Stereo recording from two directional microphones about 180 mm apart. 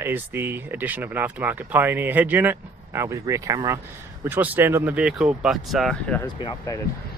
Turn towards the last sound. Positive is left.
turn(degrees=25)  # may be behind; listen again after turning